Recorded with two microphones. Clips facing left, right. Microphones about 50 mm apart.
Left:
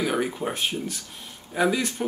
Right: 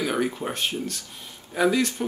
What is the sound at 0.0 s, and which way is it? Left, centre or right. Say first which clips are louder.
Speech: even; centre.